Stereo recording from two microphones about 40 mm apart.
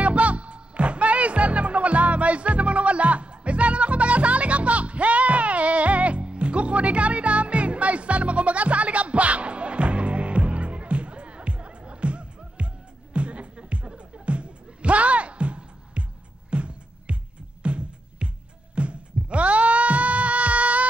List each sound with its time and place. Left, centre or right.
0.0 s music: right